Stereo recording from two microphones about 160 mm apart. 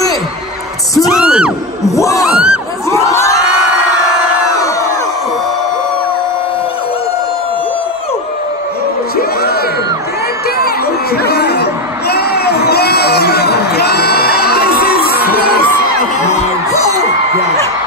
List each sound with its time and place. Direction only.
1.0 s speech: 5° right (ahead or behind)
1.9 s a sound: 20° left (ahead or behind)
2.2 s speech: 5° right (ahead or behind)
3.1 s crowd: 20° left (ahead or behind)
9.1 s whoop: 75° left (ahead or behind)
11.2 s crowd: 85° left